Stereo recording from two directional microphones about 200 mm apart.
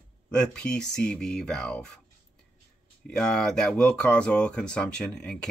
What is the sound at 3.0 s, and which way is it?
Speech, 5° left (ahead or behind).